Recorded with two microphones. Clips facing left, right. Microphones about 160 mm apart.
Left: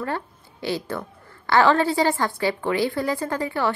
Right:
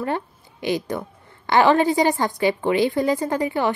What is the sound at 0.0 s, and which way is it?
A woman's voice, 20° right (ahead or behind).